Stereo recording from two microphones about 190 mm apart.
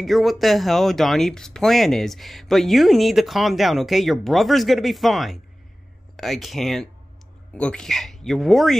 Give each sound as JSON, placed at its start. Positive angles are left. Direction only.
{"t": 0.0, "sound": "speech", "side_deg": 0}